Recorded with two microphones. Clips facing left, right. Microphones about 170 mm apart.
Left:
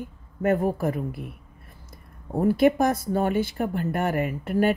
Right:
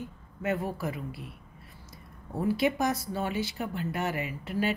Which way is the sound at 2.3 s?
50° left (ahead or behind).